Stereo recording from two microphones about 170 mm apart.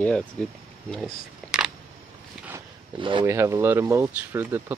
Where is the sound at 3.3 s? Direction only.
15° right (ahead or behind).